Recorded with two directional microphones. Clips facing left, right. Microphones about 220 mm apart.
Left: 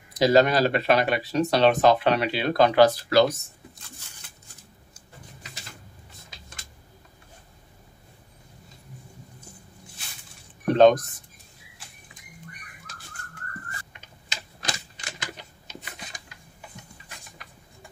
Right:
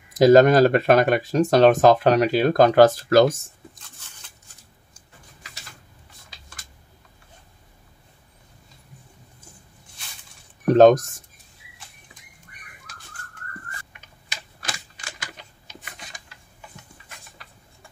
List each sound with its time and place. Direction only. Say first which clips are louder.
0.1 s speech: right 6 dB; 50° right (ahead or behind)
10.7 s speech: right 4 dB; 45° right (ahead or behind)
13.9 s typing: left 1 dB; 20° left (ahead or behind)
15.6 s a sound: left 3 dB; 20° left (ahead or behind)